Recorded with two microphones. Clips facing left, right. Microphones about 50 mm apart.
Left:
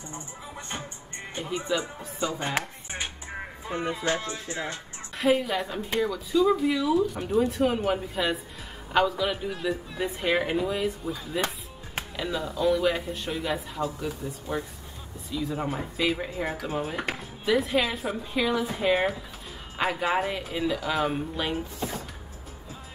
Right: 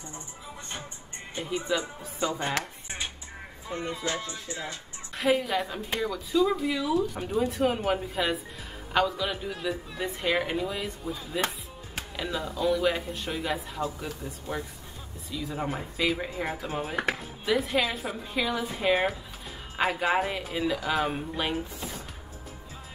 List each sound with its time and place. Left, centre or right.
1.4 s speech: centre
3.7 s music: left
5.1 s speech: centre